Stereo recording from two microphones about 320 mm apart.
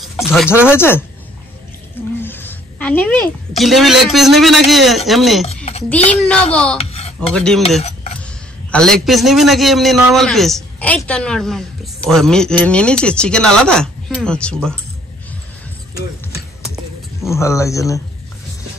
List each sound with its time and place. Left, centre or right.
0.0 s speech: centre
2.2 s a woman's voice: centre
6.8 s a sound: centre
7.3 s a man's voice: centre
8.7 s a man's voice: centre
16.3 s a sound: centre
17.2 s speech: centre